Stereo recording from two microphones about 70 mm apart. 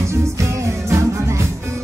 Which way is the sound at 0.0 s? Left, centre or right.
Right.